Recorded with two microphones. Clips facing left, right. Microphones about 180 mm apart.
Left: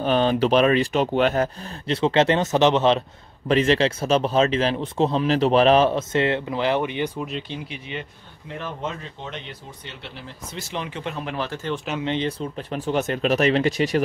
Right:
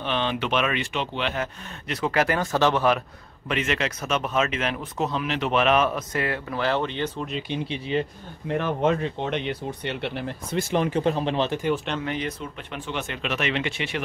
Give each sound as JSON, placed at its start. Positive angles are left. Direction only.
{"t": 0.0, "sound": "speech", "side_deg": 40}
{"t": 3.4, "sound": "speech", "side_deg": 35}
{"t": 7.4, "sound": "speech", "side_deg": -25}
{"t": 8.5, "sound": "speech", "side_deg": -60}
{"t": 11.7, "sound": "speech", "side_deg": 5}
{"t": 12.0, "sound": "speech", "side_deg": 25}